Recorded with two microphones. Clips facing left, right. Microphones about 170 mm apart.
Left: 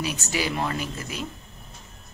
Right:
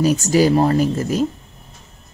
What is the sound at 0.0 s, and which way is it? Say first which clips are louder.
Speech: right 13 dB; 40° right (ahead or behind).